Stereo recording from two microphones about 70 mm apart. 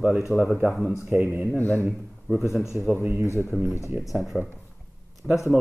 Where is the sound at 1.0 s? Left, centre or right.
Right.